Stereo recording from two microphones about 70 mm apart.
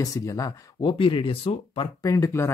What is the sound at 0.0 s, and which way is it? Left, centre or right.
Speech, left.